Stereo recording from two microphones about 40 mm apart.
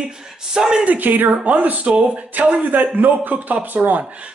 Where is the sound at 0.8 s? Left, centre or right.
Right.